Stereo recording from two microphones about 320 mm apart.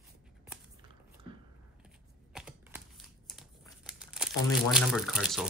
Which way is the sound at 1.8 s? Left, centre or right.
Centre.